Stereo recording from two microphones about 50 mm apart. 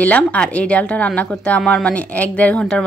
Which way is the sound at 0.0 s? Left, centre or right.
Left.